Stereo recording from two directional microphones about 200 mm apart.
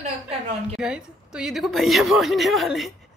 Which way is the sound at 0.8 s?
5° right (ahead or behind).